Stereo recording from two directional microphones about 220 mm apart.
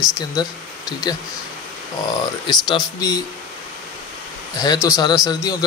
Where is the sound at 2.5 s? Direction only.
20° left (ahead or behind).